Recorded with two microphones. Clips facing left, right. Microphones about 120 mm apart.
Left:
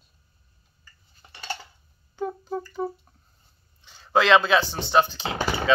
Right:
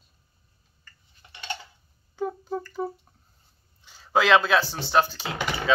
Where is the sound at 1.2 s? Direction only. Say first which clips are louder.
Left 1 dB; 35° left (ahead or behind).